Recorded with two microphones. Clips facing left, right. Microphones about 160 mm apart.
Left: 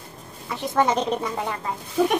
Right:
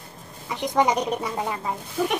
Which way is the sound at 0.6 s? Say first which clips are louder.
Even; 15° right (ahead or behind).